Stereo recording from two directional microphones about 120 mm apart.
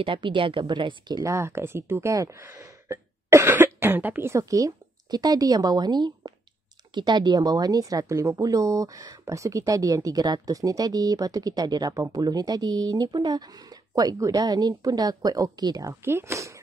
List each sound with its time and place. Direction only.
0.0 s speech: 45° right (ahead or behind); by 16.5 s 25° right (ahead or behind)